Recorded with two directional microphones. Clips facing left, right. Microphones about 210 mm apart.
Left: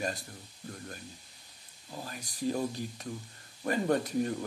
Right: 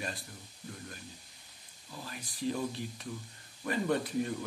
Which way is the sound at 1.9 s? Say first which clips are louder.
Left 3 dB; 45° left (ahead or behind).